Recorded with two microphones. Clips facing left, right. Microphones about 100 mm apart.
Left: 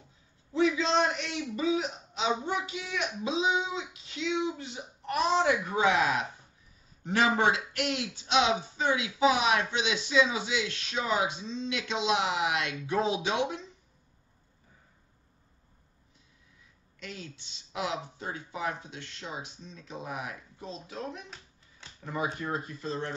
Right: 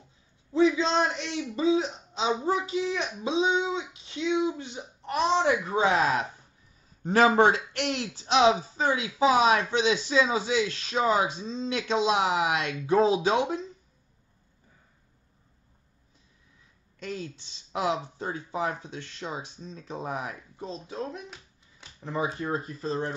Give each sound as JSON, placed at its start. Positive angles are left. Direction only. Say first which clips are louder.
{"t": 0.5, "sound": "a man's voice", "louder": "right 3 dB", "side_deg": -25}
{"t": 17.0, "sound": "a man's voice", "louder": "right 7 dB", "side_deg": -35}
{"t": 21.3, "sound": "a sound", "louder": "right 2 dB", "side_deg": -5}
{"t": 22.0, "sound": "speech", "louder": "right 3 dB", "side_deg": -25}